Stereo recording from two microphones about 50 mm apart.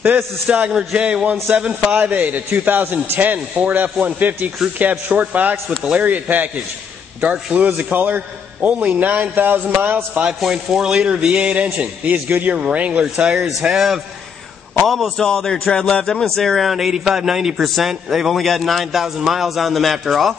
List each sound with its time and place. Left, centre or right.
0.5 s a man's voice: centre
10.4 s a man's voice: centre
13.7 s a man's voice: centre
14.9 s speech: centre
16.6 s a man's voice: centre